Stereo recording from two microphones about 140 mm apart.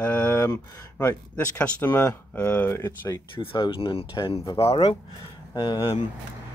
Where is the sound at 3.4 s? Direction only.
40° left (ahead or behind).